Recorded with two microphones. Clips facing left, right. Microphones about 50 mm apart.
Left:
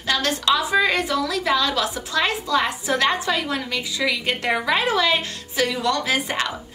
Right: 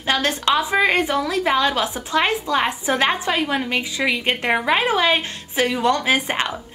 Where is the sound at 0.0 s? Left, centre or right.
Right.